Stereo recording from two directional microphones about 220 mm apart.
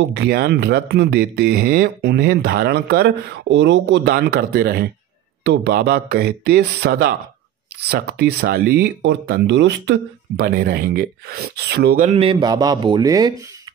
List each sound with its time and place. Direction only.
0.1 s speech: 50° right (ahead or behind); by 13.3 s 15° right (ahead or behind)